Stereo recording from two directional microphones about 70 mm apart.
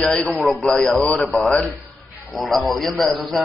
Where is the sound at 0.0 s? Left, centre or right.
Centre.